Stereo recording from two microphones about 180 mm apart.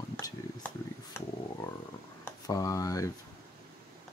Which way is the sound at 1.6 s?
20° left (ahead or behind).